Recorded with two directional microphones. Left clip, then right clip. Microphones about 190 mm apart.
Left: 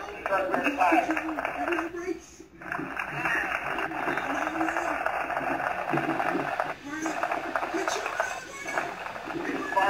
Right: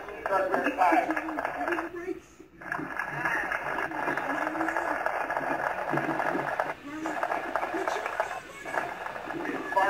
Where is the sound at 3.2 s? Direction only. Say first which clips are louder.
Left 2 dB; 40° right (ahead or behind).